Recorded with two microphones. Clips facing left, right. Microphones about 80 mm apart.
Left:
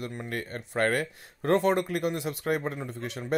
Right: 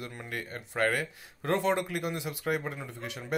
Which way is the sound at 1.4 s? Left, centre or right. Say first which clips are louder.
Left 4 dB; left.